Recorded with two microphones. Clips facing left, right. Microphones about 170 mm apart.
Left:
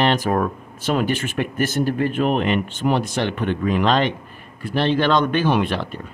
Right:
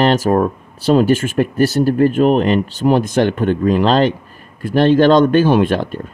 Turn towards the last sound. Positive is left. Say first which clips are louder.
# right 7 dB
turn(degrees=-45)  # may be behind; listen again after turning